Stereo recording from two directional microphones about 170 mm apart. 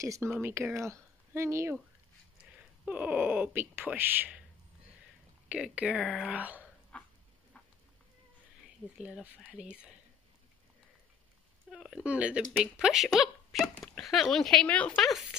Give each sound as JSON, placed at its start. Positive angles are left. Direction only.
{"t": 0.0, "sound": "speech", "side_deg": -20}
{"t": 2.8, "sound": "speech", "side_deg": -10}
{"t": 5.5, "sound": "speech", "side_deg": -5}
{"t": 6.9, "sound": "dog", "side_deg": 5}
{"t": 9.0, "sound": "speech", "side_deg": -5}
{"t": 11.7, "sound": "speech", "side_deg": -5}